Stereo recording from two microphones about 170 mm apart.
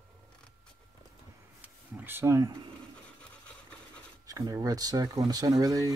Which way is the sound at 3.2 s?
5° left (ahead or behind).